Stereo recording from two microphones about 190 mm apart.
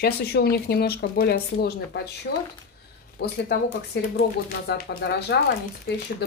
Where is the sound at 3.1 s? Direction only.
60° left (ahead or behind).